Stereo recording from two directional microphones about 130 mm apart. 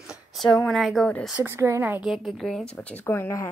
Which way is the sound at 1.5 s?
20° right (ahead or behind).